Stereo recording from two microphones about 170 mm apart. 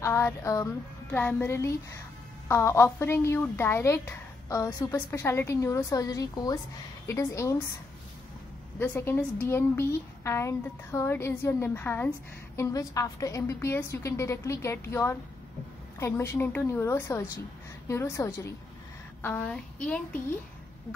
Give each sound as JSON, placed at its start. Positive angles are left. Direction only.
{"t": 0.0, "sound": "a woman's voice", "side_deg": 15}
{"t": 8.7, "sound": "a woman's voice", "side_deg": 10}